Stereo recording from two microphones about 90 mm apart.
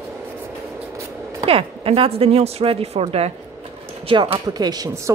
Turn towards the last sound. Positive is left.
turn(degrees=-45)  # may be behind; listen again after turning